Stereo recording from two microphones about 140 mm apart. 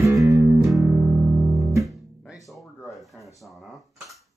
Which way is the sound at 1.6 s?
20° right (ahead or behind).